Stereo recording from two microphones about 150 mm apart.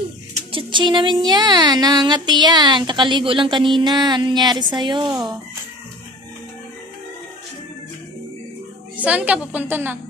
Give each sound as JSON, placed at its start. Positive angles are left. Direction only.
{"t": 0.5, "sound": "speech", "side_deg": -35}
{"t": 9.0, "sound": "a woman's voice", "side_deg": -10}